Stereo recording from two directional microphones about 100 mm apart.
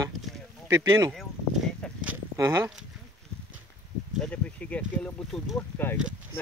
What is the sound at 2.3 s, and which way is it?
Speech, 30° right (ahead or behind).